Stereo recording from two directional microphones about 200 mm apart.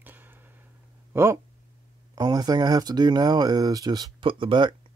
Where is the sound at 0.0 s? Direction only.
10° right (ahead or behind).